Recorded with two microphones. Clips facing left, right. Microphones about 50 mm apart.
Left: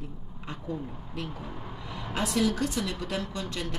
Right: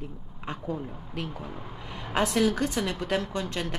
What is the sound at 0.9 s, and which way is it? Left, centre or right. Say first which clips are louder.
Speech: right 2 dB; centre.